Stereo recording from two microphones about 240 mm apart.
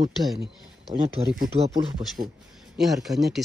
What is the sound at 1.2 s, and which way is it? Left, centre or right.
Speech, right.